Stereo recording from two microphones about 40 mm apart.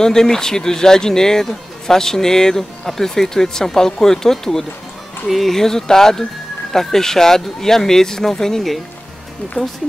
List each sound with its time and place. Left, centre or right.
0.0 s a man's voice: centre
9.6 s speech: left